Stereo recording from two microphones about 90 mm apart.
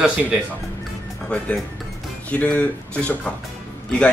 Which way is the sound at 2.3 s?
15° left (ahead or behind).